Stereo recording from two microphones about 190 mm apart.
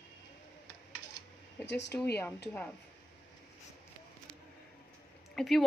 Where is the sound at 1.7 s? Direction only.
65° left (ahead or behind).